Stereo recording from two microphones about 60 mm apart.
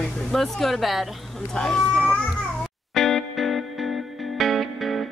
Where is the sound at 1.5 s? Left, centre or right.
Centre.